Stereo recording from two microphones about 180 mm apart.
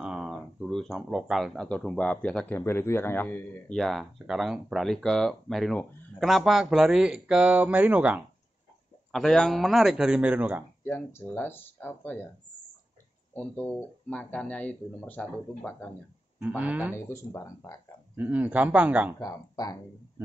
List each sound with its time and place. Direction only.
0.0 s speech: 5° right (ahead or behind)
9.1 s speech: 5° left (ahead or behind)
10.9 s speech: 10° left (ahead or behind)
13.3 s speech: 10° left (ahead or behind)
16.3 s speech: 10° right (ahead or behind)
16.9 s speech: 15° left (ahead or behind)
18.1 s speech: 10° right (ahead or behind)
19.1 s speech: 20° left (ahead or behind)